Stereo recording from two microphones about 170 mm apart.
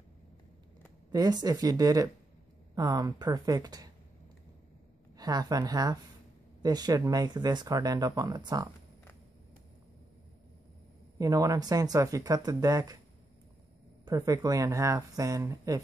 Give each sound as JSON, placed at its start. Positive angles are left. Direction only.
{"t": 1.1, "sound": "speech", "side_deg": -20}
{"t": 5.1, "sound": "speech", "side_deg": -20}
{"t": 11.1, "sound": "speech", "side_deg": -20}
{"t": 14.0, "sound": "speech", "side_deg": -20}